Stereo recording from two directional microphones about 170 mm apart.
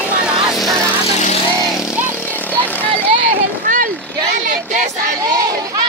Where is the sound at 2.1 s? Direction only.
10° left (ahead or behind).